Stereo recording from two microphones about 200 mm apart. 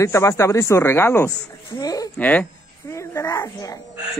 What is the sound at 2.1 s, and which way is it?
A man's voice, 10° left (ahead or behind).